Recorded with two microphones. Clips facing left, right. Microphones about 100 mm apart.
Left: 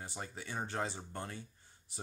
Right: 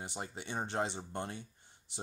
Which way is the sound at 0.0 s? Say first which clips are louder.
Right 2 dB; 20° right (ahead or behind).